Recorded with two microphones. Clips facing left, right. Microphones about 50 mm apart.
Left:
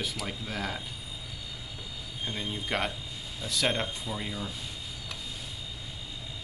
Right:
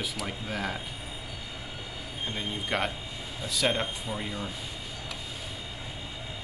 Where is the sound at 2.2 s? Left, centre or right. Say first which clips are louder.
Right 1 dB; centre.